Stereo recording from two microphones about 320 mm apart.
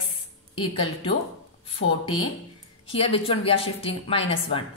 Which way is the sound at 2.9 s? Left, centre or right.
Centre.